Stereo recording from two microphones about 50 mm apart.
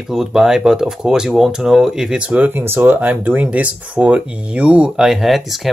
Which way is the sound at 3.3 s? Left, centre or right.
Right.